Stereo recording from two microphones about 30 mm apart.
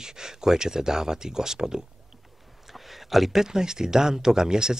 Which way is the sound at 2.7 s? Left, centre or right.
Centre.